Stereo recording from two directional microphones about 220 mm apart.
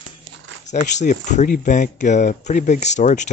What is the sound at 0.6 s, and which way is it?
Speech, 30° left (ahead or behind).